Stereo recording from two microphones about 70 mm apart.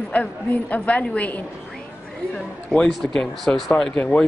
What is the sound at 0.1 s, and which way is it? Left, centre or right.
A woman's voice, centre.